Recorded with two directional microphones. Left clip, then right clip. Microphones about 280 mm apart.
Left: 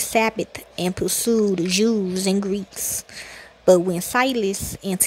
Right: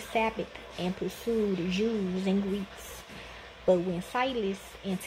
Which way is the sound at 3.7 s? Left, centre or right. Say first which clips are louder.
Left 10 dB; left.